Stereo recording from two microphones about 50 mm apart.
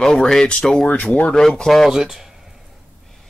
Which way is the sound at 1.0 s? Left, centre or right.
Left.